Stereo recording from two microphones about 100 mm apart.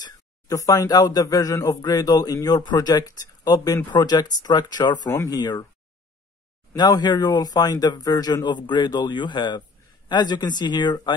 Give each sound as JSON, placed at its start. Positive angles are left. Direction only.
{"t": 0.0, "sound": "speech", "side_deg": 35}
{"t": 6.7, "sound": "speech", "side_deg": 45}